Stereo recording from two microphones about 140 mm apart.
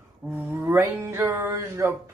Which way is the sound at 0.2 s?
30° right (ahead or behind).